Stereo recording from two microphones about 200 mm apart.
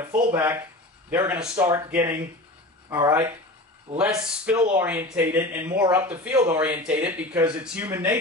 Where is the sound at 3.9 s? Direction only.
35° right (ahead or behind).